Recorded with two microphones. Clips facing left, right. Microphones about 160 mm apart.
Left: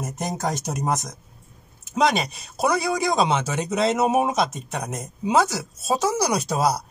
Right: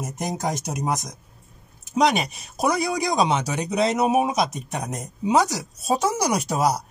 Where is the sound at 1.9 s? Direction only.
15° right (ahead or behind).